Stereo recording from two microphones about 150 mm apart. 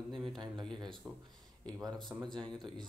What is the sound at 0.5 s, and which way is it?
Speech, 5° left (ahead or behind).